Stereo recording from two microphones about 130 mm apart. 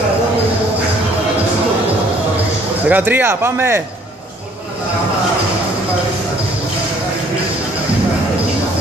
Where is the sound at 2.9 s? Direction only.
15° right (ahead or behind).